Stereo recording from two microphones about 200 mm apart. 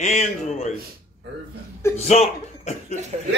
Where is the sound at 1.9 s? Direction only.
30° left (ahead or behind).